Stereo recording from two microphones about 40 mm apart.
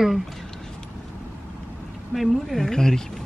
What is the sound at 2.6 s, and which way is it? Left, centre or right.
Speech, centre.